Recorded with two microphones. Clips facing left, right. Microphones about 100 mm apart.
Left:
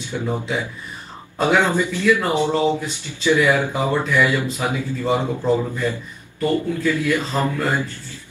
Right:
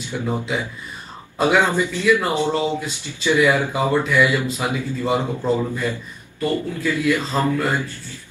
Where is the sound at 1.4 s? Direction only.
15° right (ahead or behind).